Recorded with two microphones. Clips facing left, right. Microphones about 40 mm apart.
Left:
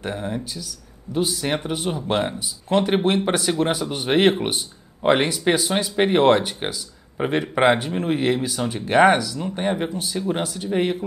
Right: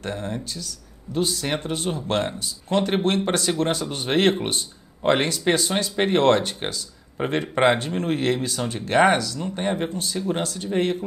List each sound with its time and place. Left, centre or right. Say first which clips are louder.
0.0 s speech: left 2 dB; centre